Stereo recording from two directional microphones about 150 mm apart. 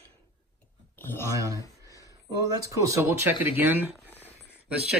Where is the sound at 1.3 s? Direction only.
20° right (ahead or behind).